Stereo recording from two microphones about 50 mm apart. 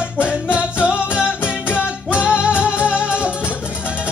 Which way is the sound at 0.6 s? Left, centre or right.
Right.